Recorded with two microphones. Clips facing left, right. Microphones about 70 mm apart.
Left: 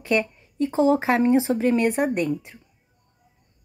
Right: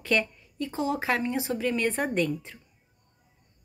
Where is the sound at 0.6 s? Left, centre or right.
Left.